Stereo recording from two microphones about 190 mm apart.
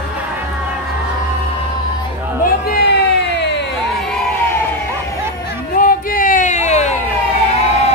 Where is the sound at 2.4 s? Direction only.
55° left (ahead or behind).